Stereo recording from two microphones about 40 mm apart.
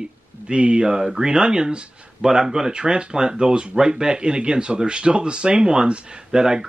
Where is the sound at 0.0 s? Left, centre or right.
Right.